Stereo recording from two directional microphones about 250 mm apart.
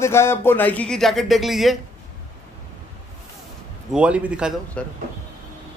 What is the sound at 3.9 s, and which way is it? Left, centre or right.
Speech, centre.